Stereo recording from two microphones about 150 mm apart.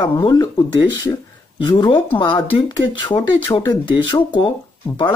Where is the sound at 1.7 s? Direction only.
35° left (ahead or behind).